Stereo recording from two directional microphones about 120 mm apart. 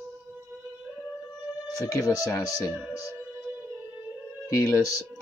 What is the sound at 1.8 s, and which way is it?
Speech, 25° left (ahead or behind).